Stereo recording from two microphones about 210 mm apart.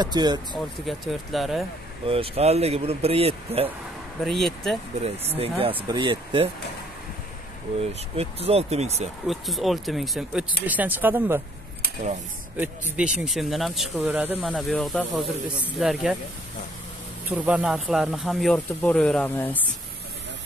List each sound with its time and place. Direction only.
0.0 s speech: 20° right (ahead or behind)
0.8 s speech: centre (ahead or behind)
2.0 s speech: 25° right (ahead or behind)
4.2 s speech: centre (ahead or behind)
5.4 s speech: 25° right (ahead or behind)
8.2 s speech: 30° right (ahead or behind)
9.3 s speech: centre (ahead or behind)
12.5 s speech: 5° right (ahead or behind)
17.3 s speech: 5° right (ahead or behind)